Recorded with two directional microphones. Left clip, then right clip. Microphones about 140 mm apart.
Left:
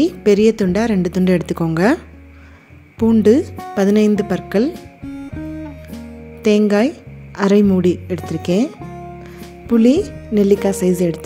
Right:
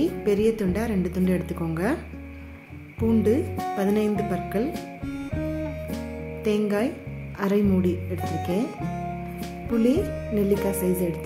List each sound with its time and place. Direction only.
0.0 s a woman's voice: 60° left (ahead or behind)
3.0 s a woman's voice: 60° left (ahead or behind)
4.7 s music: centre (ahead or behind)
6.4 s a woman's voice: 65° left (ahead or behind)
8.8 s music: centre (ahead or behind)
9.7 s a woman's voice: 60° left (ahead or behind)